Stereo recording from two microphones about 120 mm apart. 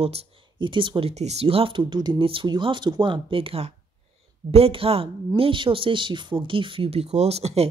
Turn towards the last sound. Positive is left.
turn(degrees=-60)  # may be behind; listen again after turning